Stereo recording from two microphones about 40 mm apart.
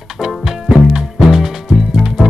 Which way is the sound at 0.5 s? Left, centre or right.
Centre.